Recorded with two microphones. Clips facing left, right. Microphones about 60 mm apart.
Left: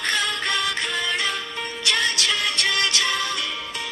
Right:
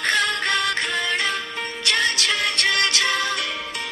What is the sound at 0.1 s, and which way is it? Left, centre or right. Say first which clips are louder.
Music: right 3 dB; right.